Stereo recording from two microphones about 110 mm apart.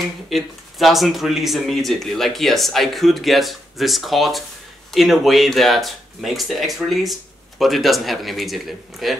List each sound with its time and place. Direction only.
0.3 s speech: centre (ahead or behind)